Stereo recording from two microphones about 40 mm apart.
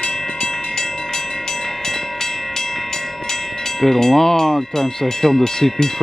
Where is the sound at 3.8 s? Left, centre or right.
Centre.